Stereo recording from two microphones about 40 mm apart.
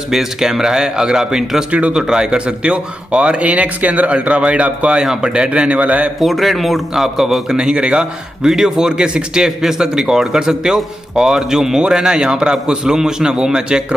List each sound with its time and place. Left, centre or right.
0.1 s a man's voice: centre
1.7 s speech: right
2.0 s a man's voice: centre
3.4 s speech: right
6.1 s a man's voice: centre
7.5 s a man's voice: right
8.5 s a man's voice: centre